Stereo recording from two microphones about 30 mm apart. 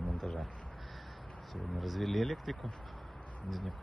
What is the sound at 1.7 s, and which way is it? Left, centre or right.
Speech, centre.